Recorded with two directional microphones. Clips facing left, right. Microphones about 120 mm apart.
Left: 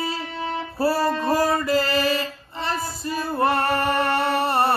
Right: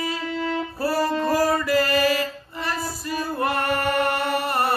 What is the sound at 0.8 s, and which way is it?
Music, 25° left (ahead or behind).